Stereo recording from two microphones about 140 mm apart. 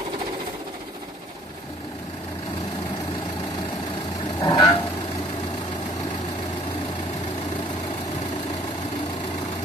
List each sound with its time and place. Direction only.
4.4 s vehicle: 30° left (ahead or behind)